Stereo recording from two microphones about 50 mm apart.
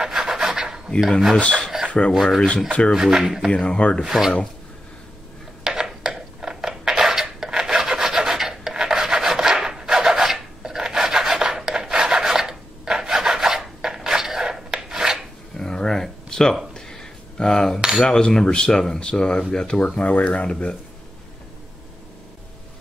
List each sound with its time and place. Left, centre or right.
0.0 s filing: centre
1.4 s cutlery: centre
1.9 s filing: left
2.9 s speech: centre
3.5 s speech: left
4.0 s speech: centre
5.6 s dishes: centre
15.5 s a sound: centre
17.7 s speech: centre
18.0 s cutlery: centre
20.0 s speech: left